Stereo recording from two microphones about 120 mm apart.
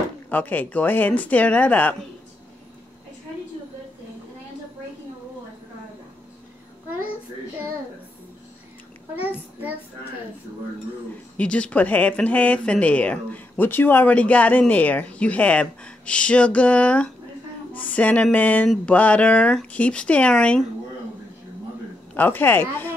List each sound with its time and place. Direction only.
0.3 s speech: 15° left (ahead or behind)
9.1 s a child's voice: 15° right (ahead or behind)
11.3 s speech: 10° left (ahead or behind)
22.1 s speech: 15° left (ahead or behind)